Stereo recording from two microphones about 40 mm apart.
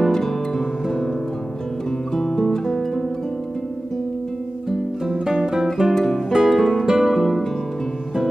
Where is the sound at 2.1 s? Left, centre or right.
Centre.